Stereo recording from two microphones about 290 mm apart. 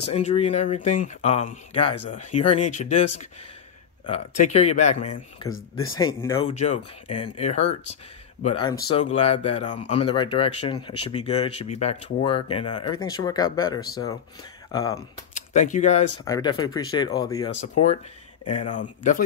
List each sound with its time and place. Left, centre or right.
0.1 s speech: left
6.5 s speech: left
15.3 s speech: left
16.3 s speech: centre
18.6 s speech: left